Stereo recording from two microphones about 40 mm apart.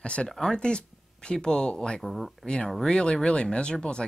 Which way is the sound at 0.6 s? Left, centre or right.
Left.